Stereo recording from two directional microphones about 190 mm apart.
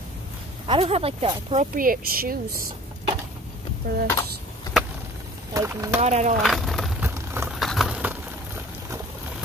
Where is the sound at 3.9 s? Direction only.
50° right (ahead or behind).